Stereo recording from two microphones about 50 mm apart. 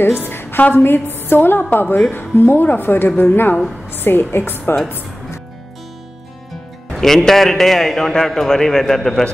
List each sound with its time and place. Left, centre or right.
0.0 s a woman's voice: left
7.0 s a man's voice: centre